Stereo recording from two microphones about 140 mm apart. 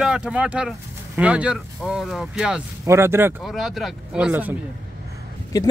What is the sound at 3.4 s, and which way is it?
Speech, centre (ahead or behind).